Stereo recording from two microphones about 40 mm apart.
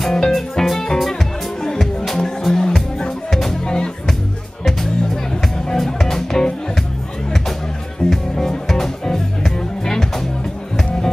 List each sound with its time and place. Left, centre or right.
0.0 s music: centre
5.7 s music: centre
8.1 s music: centre